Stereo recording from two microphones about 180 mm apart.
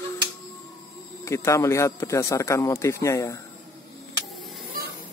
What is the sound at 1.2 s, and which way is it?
Speech, 15° left (ahead or behind).